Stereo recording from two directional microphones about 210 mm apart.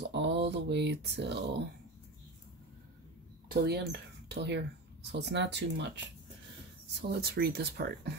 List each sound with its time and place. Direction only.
0.0 s speech: 55° right (ahead or behind)
3.6 s speech: 50° right (ahead or behind)
7.0 s speech: 50° right (ahead or behind)